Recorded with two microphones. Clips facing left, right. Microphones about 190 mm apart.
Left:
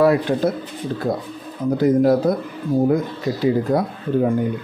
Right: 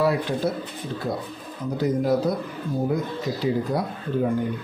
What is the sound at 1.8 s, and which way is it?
Speech, 50° left (ahead or behind).